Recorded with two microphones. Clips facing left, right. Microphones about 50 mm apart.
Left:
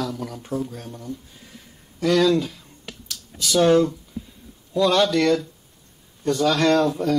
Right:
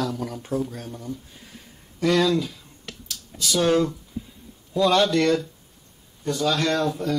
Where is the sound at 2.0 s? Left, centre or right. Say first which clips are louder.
Left 2 dB; centre.